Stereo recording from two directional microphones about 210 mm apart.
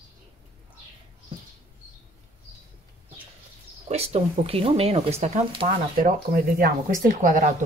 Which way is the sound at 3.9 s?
30° right (ahead or behind).